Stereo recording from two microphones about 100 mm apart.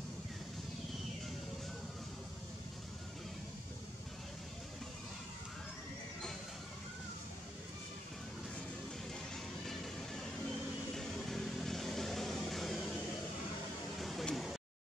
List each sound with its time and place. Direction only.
9.3 s music: 5° left (ahead or behind)
11.0 s vehicle: 5° left (ahead or behind)
13.9 s a sound: centre (ahead or behind)